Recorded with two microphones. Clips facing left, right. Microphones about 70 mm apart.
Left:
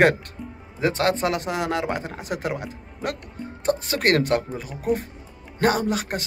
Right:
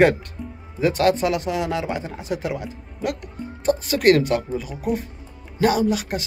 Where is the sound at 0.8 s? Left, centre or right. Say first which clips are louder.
Right 3 dB; left.